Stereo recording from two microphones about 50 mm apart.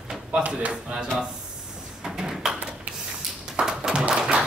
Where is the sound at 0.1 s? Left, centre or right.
Centre.